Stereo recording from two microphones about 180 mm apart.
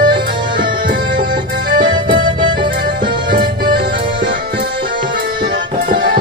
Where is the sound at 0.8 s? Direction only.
50° right (ahead or behind).